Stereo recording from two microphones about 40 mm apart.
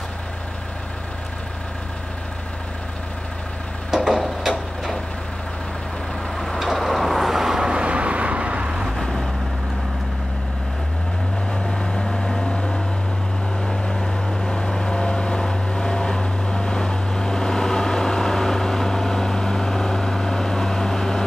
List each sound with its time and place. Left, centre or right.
3.9 s a sound: centre
6.3 s vehicle: centre
7.5 s vehicle: centre
7.8 s vehicle: right
8.9 s vehicle: centre
11.5 s vehicle: centre
12.4 s vehicle: centre